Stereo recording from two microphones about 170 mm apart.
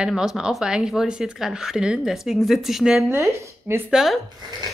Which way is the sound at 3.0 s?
15° right (ahead or behind).